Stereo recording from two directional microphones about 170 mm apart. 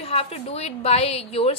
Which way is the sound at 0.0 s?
35° left (ahead or behind).